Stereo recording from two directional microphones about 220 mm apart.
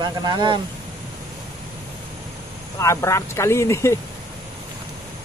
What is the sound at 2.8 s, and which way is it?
A man's voice, 15° left (ahead or behind).